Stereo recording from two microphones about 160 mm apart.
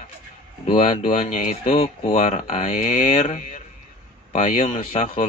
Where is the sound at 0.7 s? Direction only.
45° left (ahead or behind).